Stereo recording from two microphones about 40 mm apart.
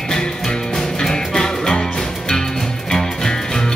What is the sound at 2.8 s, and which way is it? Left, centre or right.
Music, centre.